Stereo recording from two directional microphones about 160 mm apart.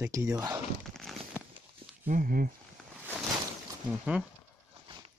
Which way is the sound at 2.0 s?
60° right (ahead or behind).